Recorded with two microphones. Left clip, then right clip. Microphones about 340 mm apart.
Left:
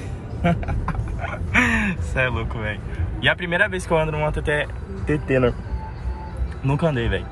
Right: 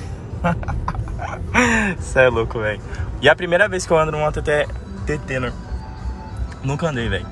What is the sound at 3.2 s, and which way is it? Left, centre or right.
Speech, centre.